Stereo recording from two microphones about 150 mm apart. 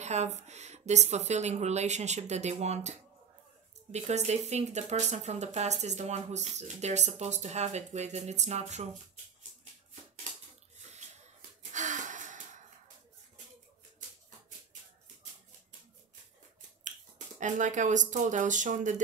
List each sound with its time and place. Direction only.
0.0 s speech: 50° right (ahead or behind)
11.7 s wheeze: 55° right (ahead or behind)
17.4 s speech: 55° right (ahead or behind)